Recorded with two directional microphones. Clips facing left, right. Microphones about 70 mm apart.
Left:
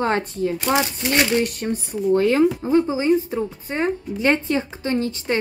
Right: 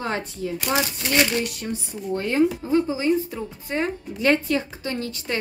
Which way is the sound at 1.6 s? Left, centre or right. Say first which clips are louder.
Left 5 dB; left.